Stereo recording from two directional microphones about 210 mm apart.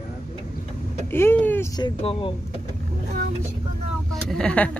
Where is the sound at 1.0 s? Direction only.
10° left (ahead or behind).